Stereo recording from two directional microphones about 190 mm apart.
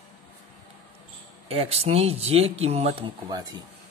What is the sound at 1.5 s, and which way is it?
Speech, 30° right (ahead or behind).